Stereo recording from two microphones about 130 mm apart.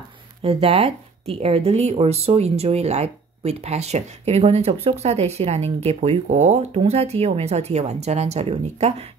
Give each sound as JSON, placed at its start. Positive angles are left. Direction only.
{"t": 0.4, "sound": "speech", "side_deg": -45}